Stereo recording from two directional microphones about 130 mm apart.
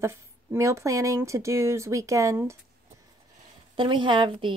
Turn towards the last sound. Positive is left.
turn(degrees=-40)  # may be behind; listen again after turning